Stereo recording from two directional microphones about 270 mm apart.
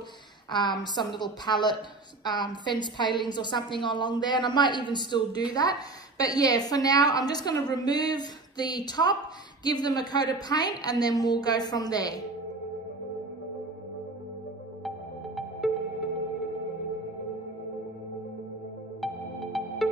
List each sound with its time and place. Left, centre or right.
0.5 s a woman's voice: centre
14.8 s music: centre
18.9 s music: centre